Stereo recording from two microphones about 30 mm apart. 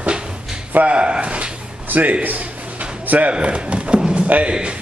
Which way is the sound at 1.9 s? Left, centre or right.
Right.